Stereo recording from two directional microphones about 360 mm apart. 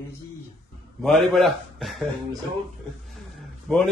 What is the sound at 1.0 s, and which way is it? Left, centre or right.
A man's voice, centre.